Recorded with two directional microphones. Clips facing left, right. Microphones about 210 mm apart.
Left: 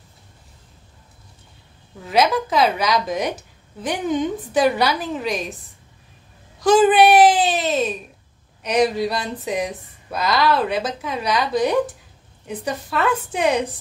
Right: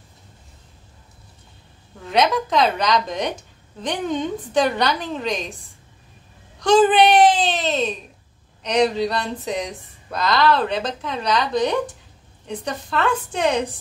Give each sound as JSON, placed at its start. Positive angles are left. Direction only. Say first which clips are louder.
{"t": 2.0, "sound": "a woman's voice", "louder": "left 1 dB", "side_deg": 5}
{"t": 6.6, "sound": "speech", "louder": "left 1 dB", "side_deg": 5}